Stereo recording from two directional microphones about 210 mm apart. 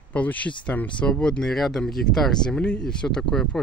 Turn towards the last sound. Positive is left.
turn(degrees=5)  # may be behind; listen again after turning